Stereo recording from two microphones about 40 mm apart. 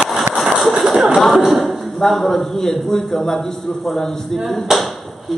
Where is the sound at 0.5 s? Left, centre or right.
Centre.